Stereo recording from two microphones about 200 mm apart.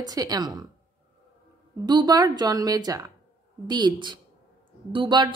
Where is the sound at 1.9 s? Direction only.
20° right (ahead or behind).